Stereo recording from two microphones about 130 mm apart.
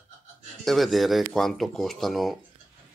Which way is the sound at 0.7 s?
Centre (ahead or behind).